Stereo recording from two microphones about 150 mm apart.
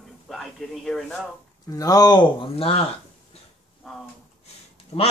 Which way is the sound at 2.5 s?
40° left (ahead or behind).